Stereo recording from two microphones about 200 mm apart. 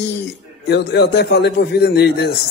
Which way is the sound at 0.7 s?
55° left (ahead or behind).